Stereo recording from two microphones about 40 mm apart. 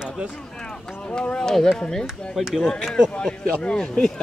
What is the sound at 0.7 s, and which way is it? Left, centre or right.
Speech, left.